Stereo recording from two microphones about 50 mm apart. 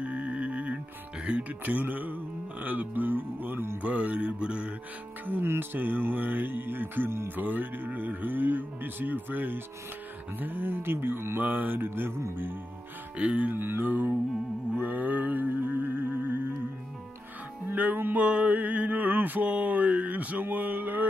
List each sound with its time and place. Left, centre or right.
0.0 s music: right
1.6 s mantra: right
3.8 s music: right
5.2 s mantra: right
5.5 s music: right
7.2 s mantra: right
10.4 s music: right
11.4 s music: right
13.2 s music: right
13.6 s music: right
14.8 s music: right
17.6 s music: right
18.2 s mantra: right